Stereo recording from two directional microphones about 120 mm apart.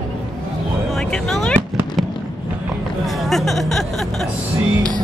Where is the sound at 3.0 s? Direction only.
Centre (ahead or behind).